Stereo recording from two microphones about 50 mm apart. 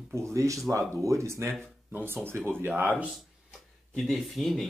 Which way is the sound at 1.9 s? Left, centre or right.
Right.